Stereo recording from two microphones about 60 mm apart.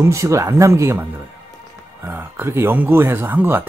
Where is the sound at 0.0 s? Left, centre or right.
Right.